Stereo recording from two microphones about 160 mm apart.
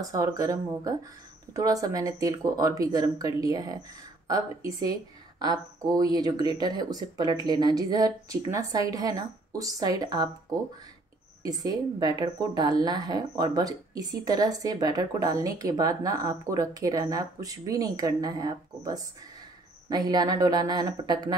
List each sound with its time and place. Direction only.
0.0 s speech: 20° right (ahead or behind)